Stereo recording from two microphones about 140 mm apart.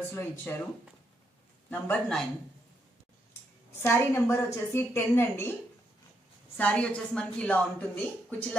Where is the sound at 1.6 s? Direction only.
10° left (ahead or behind).